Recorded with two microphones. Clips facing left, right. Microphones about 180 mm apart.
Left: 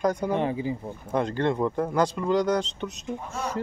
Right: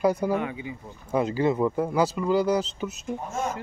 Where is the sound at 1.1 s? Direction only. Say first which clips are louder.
Right 2 dB; 5° right (ahead or behind).